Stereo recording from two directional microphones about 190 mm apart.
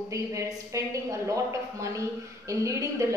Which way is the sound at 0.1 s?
15° right (ahead or behind).